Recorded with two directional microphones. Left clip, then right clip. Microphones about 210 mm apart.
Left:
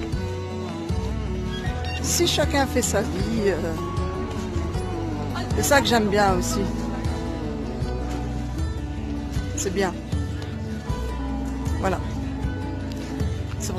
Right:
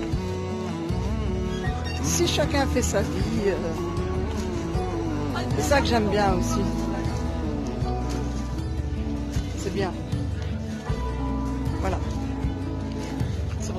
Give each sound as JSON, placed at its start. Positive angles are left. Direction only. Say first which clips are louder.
{"t": 2.1, "sound": "speech", "louder": "left 2 dB", "side_deg": 10}
{"t": 5.7, "sound": "speech", "louder": "left 4 dB", "side_deg": 15}